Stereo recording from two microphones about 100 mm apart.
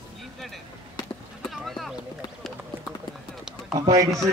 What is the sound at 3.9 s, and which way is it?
Speech, 35° right (ahead or behind).